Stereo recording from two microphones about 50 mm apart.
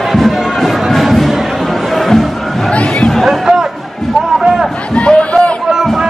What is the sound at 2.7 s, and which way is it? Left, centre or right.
Chatter, left.